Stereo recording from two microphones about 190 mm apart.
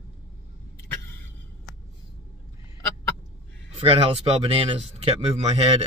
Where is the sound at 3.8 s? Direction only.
30° right (ahead or behind).